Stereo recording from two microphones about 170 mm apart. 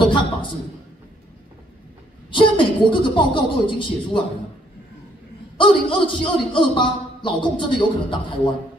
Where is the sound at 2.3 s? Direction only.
30° left (ahead or behind).